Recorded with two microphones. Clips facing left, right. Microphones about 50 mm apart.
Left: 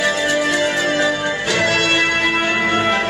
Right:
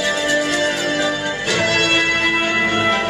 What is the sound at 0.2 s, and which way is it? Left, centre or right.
Music, centre.